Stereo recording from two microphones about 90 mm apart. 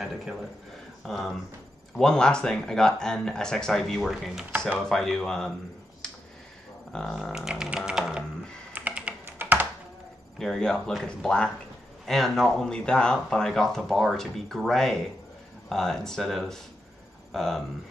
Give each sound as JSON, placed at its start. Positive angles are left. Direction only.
{"t": 0.0, "sound": "speech", "side_deg": -5}
{"t": 6.9, "sound": "speech", "side_deg": 5}
{"t": 7.3, "sound": "music", "side_deg": -5}
{"t": 8.7, "sound": "computer keyboard", "side_deg": -15}
{"t": 10.4, "sound": "speech", "side_deg": 5}